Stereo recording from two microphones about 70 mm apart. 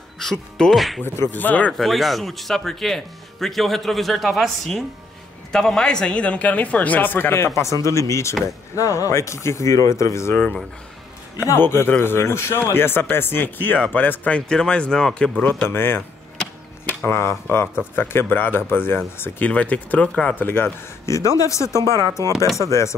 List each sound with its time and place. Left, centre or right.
0.2 s speech: centre
1.0 s speech: left
1.3 s speech: left
1.7 s speech: centre; by 10.3 s left
11.3 s speech: left; by 15.3 s centre
15.7 s speech: left
17.1 s speech: left
19.4 s speech: centre
20.3 s speech: left
21.1 s speech: left